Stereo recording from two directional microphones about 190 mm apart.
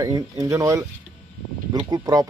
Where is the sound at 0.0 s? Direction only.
15° right (ahead or behind).